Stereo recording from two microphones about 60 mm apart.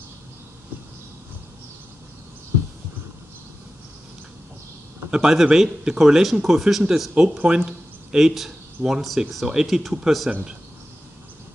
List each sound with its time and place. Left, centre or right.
5.1 s speech: centre